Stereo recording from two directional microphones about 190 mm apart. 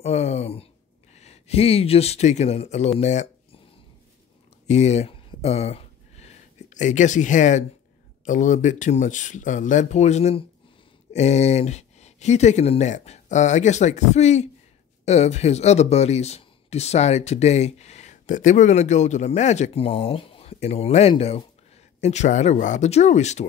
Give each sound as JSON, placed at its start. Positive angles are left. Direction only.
{"t": 0.0, "sound": "speech", "side_deg": 35}
{"t": 4.6, "sound": "a sound", "side_deg": 35}
{"t": 8.3, "sound": "speech", "side_deg": 40}